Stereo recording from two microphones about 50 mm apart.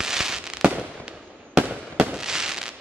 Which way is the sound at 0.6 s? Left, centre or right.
Right.